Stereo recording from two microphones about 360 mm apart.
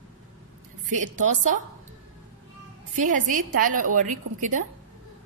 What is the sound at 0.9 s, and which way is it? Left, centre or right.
Speech, centre.